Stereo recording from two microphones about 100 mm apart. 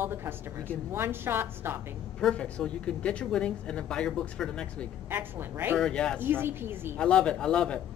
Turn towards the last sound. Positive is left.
turn(degrees=10)  # may be behind; listen again after turning